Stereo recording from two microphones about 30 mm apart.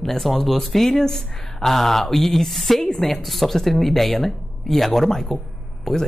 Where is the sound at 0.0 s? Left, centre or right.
Centre.